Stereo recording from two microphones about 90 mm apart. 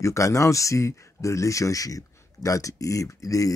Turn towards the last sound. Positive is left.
turn(degrees=40)  # may be behind; listen again after turning